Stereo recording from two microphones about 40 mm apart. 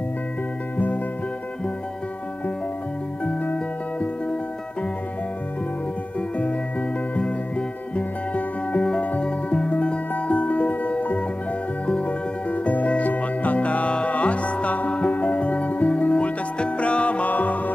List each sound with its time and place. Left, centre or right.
3.5 s music: left
7.9 s music: left
13.0 s music: left